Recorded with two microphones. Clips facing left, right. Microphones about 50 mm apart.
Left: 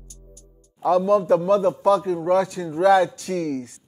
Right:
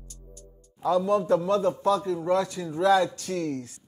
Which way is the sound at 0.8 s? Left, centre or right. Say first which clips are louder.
Left 5 dB; left.